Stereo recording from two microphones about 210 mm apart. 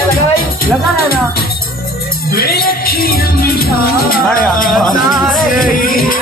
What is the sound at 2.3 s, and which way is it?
Speech, 45° left (ahead or behind).